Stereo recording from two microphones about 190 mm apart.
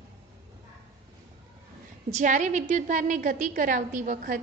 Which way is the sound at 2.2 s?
40° right (ahead or behind).